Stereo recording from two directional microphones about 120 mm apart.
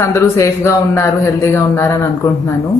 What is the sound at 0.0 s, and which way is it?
Speech, 25° left (ahead or behind).